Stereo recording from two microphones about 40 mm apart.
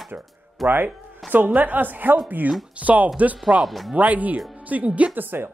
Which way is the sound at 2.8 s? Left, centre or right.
Right.